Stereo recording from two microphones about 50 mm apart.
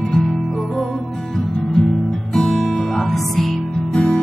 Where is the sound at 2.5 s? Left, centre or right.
Centre.